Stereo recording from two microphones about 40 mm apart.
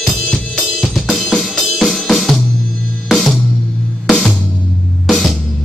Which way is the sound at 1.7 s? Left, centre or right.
Centre.